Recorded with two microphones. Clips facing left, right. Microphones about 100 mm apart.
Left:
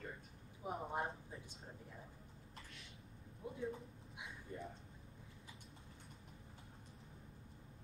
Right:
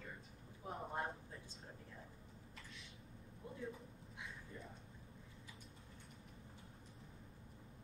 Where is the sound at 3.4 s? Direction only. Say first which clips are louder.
Left 4 dB; 15° left (ahead or behind).